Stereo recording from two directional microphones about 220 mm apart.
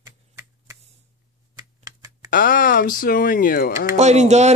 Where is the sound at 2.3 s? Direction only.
40° left (ahead or behind).